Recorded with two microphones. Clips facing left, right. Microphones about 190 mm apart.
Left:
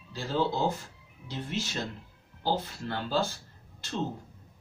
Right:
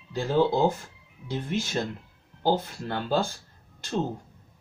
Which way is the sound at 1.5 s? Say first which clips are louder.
Right 5 dB; 55° right (ahead or behind).